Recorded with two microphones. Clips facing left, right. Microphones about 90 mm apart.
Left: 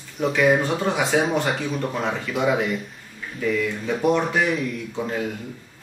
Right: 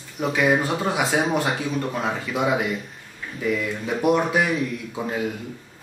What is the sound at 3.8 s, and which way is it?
Speech, 10° right (ahead or behind).